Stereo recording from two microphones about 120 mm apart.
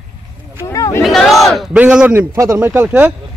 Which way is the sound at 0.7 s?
30° left (ahead or behind).